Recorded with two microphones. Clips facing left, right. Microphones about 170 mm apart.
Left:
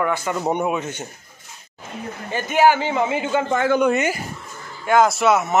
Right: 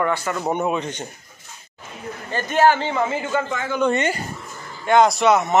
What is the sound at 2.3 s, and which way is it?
A man's voice, 10° left (ahead or behind).